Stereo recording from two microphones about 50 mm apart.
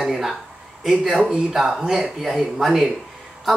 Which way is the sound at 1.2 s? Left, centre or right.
Centre.